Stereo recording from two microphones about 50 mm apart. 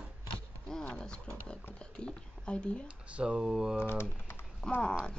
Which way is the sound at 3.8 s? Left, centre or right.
Left.